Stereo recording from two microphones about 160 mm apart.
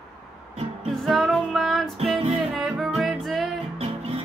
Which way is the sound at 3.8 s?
35° right (ahead or behind).